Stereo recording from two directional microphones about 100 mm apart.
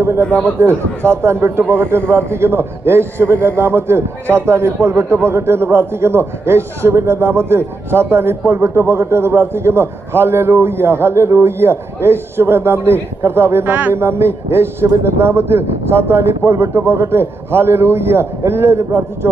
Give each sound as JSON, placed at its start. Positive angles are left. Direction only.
{"t": 0.2, "sound": "a man's voice", "side_deg": 15}
{"t": 0.6, "sound": "a man's voice", "side_deg": -25}